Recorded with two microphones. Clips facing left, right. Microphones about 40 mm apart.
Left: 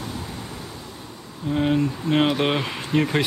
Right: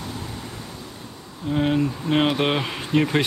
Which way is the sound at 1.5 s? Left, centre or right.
Centre.